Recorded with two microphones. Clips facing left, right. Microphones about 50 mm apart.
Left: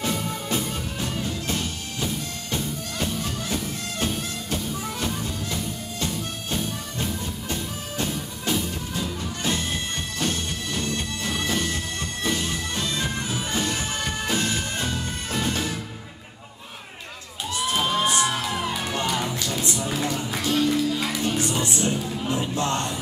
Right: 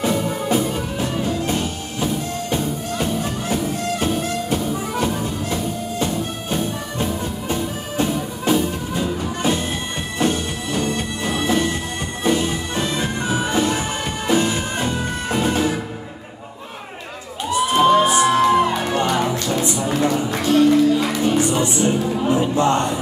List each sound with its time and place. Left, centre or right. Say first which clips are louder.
0.0 s music: right 7 dB; centre
17.5 s crowd: right 8 dB; centre
17.7 s music: right 9 dB; centre
19.6 s a sound: right 7 dB; centre
20.3 s music: right 8 dB; centre
22.0 s music: right 8 dB; right